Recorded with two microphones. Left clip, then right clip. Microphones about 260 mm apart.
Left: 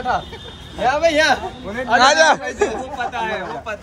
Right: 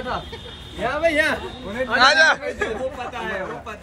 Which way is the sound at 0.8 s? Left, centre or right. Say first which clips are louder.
Left 4 dB; left.